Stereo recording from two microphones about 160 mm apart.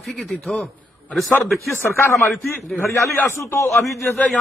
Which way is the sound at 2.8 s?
20° left (ahead or behind).